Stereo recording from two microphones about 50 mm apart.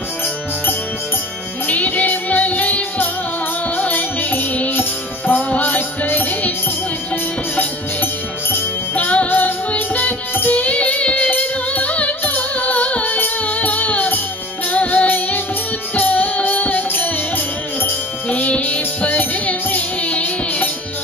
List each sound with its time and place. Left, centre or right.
1.7 s music: left
7.5 s music: left
18.3 s music: left